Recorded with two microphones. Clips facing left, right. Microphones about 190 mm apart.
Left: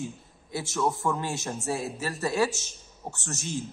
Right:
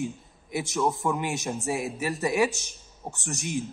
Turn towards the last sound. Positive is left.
turn(degrees=-15)  # may be behind; listen again after turning